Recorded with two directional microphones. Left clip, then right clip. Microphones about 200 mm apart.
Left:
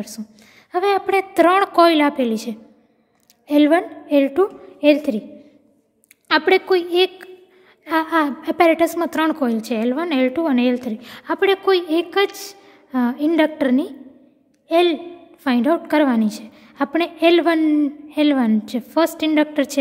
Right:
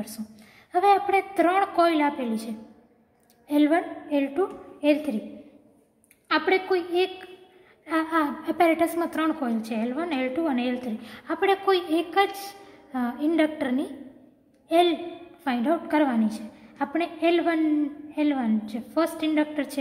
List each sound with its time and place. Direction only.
0.7 s a woman's voice: 55° left (ahead or behind)
6.2 s a woman's voice: 55° left (ahead or behind)